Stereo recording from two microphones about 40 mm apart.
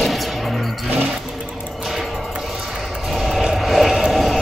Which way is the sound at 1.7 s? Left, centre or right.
Centre.